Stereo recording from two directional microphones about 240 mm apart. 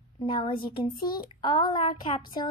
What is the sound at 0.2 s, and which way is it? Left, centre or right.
A woman's voice, left.